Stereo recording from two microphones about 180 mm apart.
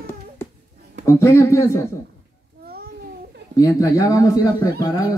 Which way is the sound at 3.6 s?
20° left (ahead or behind).